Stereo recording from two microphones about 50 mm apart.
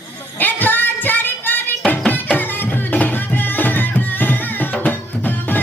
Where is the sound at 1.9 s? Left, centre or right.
Left.